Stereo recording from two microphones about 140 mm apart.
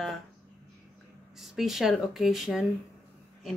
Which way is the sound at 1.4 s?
Centre (ahead or behind).